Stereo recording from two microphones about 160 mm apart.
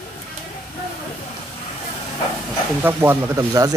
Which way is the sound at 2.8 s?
15° right (ahead or behind).